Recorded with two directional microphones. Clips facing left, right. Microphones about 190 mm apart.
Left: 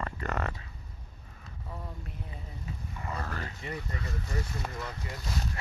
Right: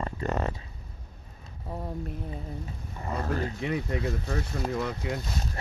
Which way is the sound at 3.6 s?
80° right.